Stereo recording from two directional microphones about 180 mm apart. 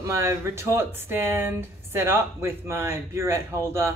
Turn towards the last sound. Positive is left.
turn(degrees=-15)  # may be behind; listen again after turning